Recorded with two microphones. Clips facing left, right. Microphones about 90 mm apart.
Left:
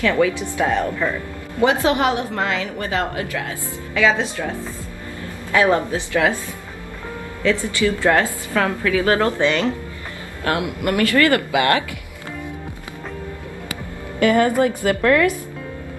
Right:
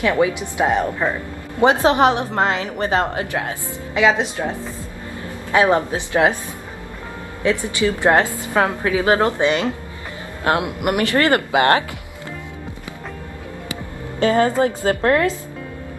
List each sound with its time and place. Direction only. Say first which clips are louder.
0.0 s a woman's voice: even; 20° right (ahead or behind)
5.5 s a woman's voice: right 1 dB; 20° right (ahead or behind)
7.4 s a woman's voice: even; 20° right (ahead or behind)
14.2 s a woman's voice: even; 30° right (ahead or behind)